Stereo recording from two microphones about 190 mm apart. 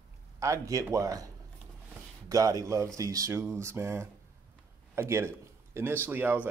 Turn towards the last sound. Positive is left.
turn(degrees=-10)  # may be behind; listen again after turning